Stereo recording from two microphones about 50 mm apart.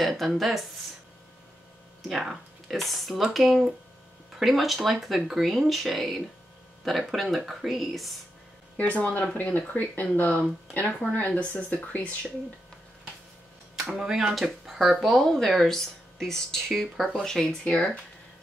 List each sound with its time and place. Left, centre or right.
0.0 s speech: centre
2.0 s speech: centre
8.7 s speech: left
13.9 s speech: centre
15.1 s speech: centre